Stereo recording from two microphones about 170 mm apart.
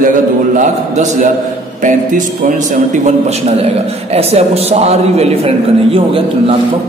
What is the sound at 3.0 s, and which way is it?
A man's voice, 40° right (ahead or behind).